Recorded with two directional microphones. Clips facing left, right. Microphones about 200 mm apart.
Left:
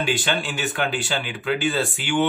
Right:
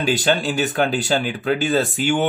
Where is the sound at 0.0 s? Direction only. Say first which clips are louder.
Right 5 dB; 40° right (ahead or behind).